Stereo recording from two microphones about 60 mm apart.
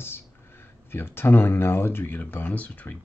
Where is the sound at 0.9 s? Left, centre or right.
Left.